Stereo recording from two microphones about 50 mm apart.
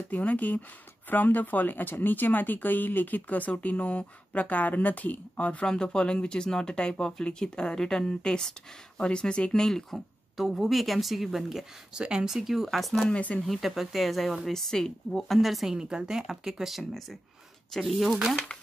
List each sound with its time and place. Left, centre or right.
0.1 s speech: left
5.7 s a woman's voice: centre
13.1 s speech: left
13.5 s a woman's voice: centre
14.5 s a woman's voice: centre